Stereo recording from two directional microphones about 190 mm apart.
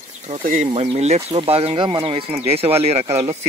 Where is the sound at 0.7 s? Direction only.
30° right (ahead or behind).